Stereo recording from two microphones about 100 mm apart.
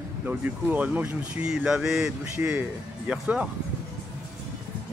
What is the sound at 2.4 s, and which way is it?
Speech, 20° right (ahead or behind).